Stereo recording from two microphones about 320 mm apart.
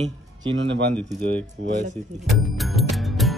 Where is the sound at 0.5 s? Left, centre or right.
Right.